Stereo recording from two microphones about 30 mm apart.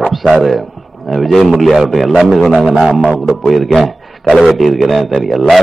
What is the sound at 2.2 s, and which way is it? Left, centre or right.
Speech, centre.